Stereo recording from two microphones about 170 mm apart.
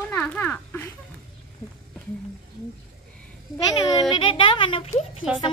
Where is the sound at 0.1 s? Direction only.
10° left (ahead or behind).